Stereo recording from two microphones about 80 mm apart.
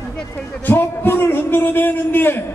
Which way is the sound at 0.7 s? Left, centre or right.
Left.